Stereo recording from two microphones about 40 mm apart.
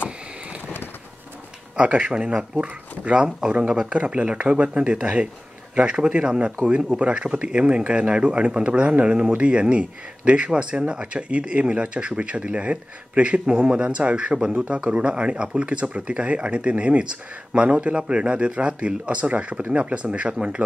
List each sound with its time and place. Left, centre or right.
1.8 s speech: right
3.3 s speech: centre
3.8 s speech: right